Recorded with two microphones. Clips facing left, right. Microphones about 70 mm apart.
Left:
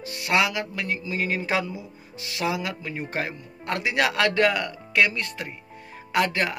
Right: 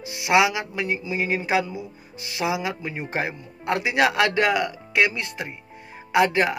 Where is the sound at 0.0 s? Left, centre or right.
Centre.